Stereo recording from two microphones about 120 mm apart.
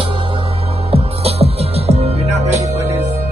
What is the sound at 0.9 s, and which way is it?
Music, 55° right (ahead or behind).